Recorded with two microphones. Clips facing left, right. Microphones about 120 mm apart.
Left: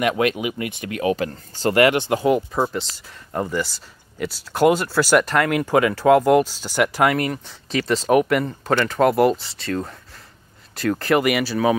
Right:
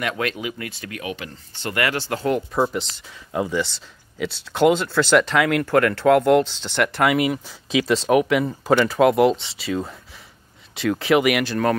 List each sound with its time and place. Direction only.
0.0 s speech: 15° left (ahead or behind)
1.1 s speech: 40° left (ahead or behind)
1.8 s speech: 20° left (ahead or behind)
2.3 s speech: centre (ahead or behind)